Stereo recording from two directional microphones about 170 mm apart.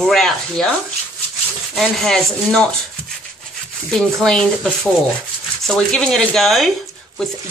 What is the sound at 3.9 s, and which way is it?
Speech, centre (ahead or behind).